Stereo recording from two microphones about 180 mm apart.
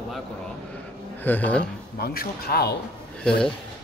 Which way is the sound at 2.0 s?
60° left (ahead or behind).